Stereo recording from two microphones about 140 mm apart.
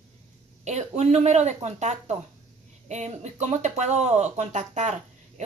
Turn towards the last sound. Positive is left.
turn(degrees=-55)  # may be behind; listen again after turning